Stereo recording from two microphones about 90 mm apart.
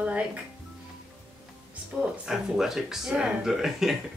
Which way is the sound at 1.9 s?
10° right (ahead or behind).